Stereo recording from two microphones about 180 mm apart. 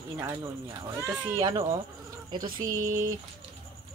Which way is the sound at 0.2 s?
20° right (ahead or behind).